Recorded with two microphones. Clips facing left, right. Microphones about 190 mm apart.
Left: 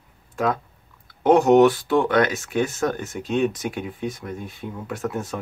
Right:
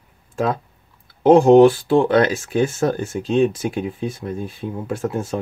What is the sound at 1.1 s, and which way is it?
Speech, 30° right (ahead or behind).